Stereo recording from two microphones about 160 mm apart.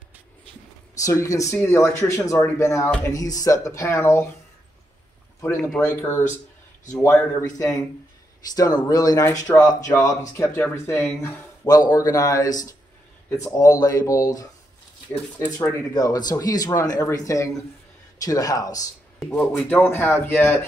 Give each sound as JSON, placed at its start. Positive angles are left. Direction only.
{"t": 1.0, "sound": "speech", "side_deg": 20}
{"t": 5.6, "sound": "speech", "side_deg": 5}
{"t": 19.3, "sound": "speech", "side_deg": 10}